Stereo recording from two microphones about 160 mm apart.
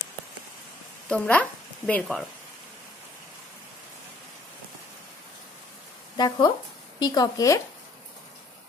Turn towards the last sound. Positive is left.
turn(degrees=20)  # may be behind; listen again after turning